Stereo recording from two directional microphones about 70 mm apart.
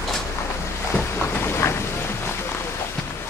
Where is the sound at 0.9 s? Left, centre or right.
Left.